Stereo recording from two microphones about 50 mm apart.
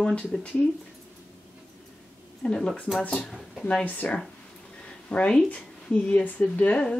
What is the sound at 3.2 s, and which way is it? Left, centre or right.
Speech, centre.